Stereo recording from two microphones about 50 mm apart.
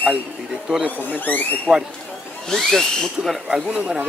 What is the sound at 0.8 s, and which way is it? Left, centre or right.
Speech, left.